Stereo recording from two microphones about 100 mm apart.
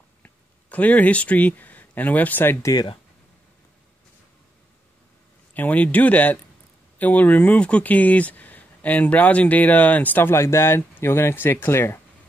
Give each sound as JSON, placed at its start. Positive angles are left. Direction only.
{"t": 0.2, "sound": "speech", "side_deg": 15}
{"t": 2.6, "sound": "speech", "side_deg": 40}
{"t": 5.5, "sound": "speech", "side_deg": 15}